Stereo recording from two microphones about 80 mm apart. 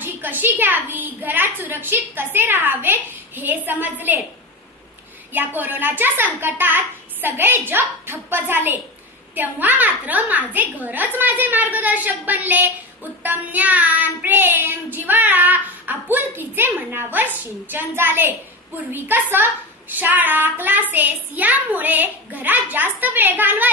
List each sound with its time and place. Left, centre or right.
0.0 s child singing: right
5.3 s child singing: right